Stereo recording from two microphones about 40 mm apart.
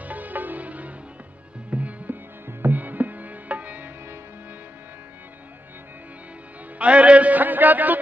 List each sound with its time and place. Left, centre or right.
0.0 s music: right
2.4 s music: right
6.8 s music: right